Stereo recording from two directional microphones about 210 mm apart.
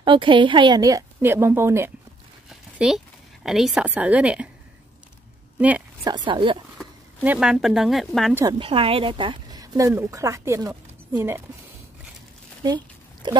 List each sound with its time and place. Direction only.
0.0 s speech: 25° right (ahead or behind)
2.5 s a sound: centre (ahead or behind)
3.4 s speech: centre (ahead or behind)
6.0 s speech: 20° right (ahead or behind)
7.2 s speech: 5° right (ahead or behind)
8.4 s speech: 20° right (ahead or behind)
12.6 s a sound: 20° right (ahead or behind)